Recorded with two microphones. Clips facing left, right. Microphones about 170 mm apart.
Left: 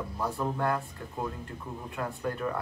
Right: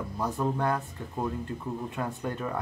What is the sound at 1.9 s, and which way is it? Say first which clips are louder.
Speech: right 1 dB; 20° right (ahead or behind).